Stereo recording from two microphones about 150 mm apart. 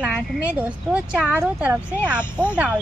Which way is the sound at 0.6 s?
10° right (ahead or behind).